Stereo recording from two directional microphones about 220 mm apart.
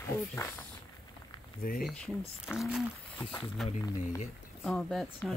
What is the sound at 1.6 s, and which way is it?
Speech, 40° left (ahead or behind).